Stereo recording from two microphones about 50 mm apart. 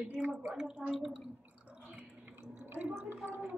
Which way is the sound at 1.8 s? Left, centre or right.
Right.